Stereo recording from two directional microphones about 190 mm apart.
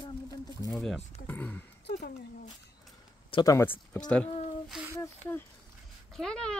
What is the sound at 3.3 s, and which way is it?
Speech, 20° left (ahead or behind).